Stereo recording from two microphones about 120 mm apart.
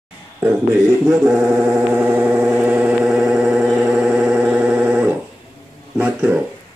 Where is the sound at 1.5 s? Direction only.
15° right (ahead or behind).